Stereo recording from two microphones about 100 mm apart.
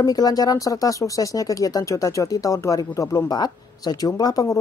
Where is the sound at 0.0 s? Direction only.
40° left (ahead or behind).